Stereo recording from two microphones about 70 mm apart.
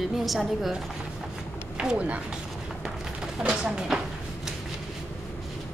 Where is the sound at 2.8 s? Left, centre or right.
Centre.